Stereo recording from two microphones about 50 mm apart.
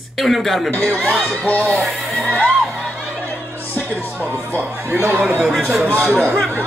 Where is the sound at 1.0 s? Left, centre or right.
Centre.